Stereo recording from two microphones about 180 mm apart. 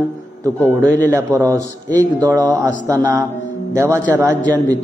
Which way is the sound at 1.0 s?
15° right (ahead or behind).